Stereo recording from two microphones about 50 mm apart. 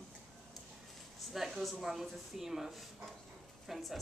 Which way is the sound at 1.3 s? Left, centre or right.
Centre.